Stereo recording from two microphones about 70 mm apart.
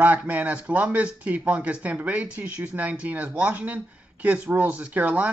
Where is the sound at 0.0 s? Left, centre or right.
Right.